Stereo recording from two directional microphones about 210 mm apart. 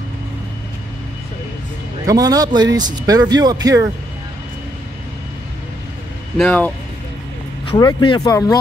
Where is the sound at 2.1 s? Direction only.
15° right (ahead or behind).